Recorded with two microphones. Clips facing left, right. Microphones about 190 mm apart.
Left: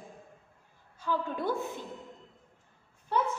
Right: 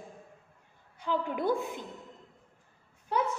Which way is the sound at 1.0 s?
15° right (ahead or behind).